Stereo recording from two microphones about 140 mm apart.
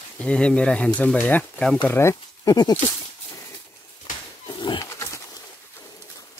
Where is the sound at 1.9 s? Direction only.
20° left (ahead or behind).